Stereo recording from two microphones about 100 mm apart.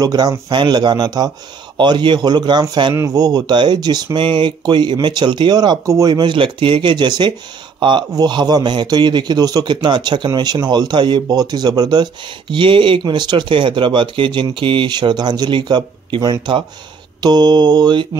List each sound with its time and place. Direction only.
0.0 s speech: 40° right (ahead or behind)
1.8 s a man's voice: 50° right (ahead or behind)
2.9 s a man's voice: 35° right (ahead or behind)